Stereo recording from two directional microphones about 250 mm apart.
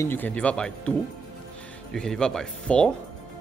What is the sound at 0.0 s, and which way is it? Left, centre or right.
Speech, centre.